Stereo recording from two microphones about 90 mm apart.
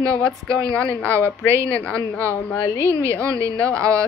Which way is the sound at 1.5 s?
30° right (ahead or behind).